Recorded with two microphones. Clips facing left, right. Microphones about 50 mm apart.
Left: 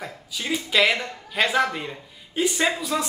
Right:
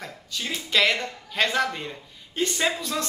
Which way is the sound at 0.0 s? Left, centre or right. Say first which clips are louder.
Left 1 dB; centre.